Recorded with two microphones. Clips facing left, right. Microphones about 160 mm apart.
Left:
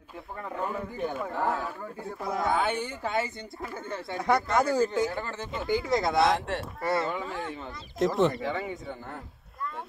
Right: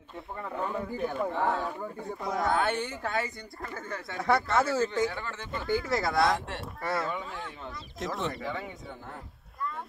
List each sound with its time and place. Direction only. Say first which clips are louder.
0.4 s speech: even; 5° left (ahead or behind); by 3.3 s 20° left (ahead or behind)
4.1 s speech: left 1 dB; centre (ahead or behind)
4.5 s speech: left 2 dB; 15° left (ahead or behind)
5.2 s speech: left 3 dB; 35° left (ahead or behind)
5.9 s speech: left 3 dB; 20° left (ahead or behind)
6.4 s speech: left 5 dB; centre (ahead or behind)